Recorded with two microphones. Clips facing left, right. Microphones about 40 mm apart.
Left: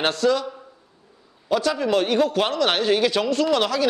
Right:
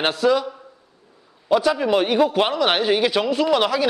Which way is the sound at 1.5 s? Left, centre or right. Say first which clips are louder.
Right 3 dB; centre.